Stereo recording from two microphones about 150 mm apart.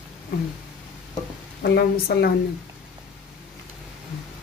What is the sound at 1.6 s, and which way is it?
Speech, 90° left.